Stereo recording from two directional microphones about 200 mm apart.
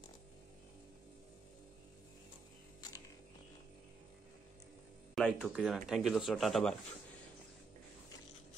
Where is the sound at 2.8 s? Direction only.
20° left (ahead or behind).